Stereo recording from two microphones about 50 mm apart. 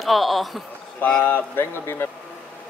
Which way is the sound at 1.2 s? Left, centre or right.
Left.